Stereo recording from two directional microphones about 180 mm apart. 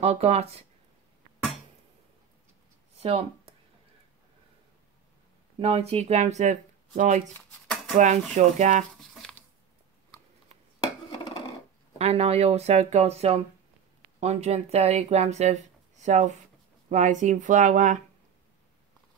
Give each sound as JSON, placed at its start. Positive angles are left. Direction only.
{"t": 0.0, "sound": "speech", "side_deg": -35}
{"t": 3.0, "sound": "speech", "side_deg": -35}
{"t": 5.6, "sound": "speech", "side_deg": -35}
{"t": 12.0, "sound": "speech", "side_deg": -35}